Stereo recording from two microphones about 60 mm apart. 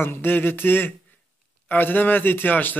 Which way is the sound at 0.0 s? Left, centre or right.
Left.